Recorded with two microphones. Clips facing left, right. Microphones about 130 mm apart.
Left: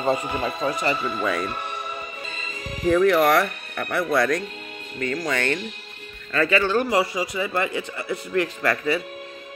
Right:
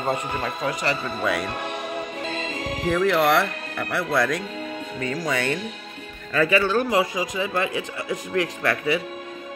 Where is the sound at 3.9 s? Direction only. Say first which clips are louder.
Left 2 dB; 5° right (ahead or behind).